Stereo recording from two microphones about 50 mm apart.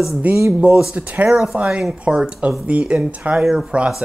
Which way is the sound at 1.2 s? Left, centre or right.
Centre.